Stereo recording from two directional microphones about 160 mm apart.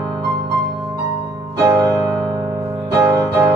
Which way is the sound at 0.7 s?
25° right (ahead or behind).